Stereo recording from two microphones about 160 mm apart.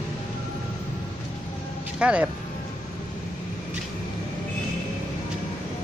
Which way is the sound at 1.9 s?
5° right (ahead or behind).